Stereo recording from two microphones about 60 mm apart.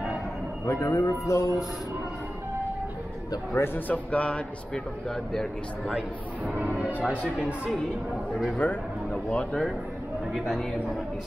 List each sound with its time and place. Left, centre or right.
0.7 s speech: left
3.5 s speech: left
3.9 s speech: left
5.3 s speech: centre
6.5 s speech: right
8.5 s speech: left
10.3 s a man's voice: centre